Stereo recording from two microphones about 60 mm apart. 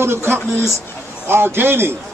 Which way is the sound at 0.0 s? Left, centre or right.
Right.